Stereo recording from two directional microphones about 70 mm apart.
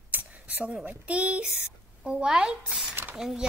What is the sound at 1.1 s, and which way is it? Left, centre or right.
Speech, centre.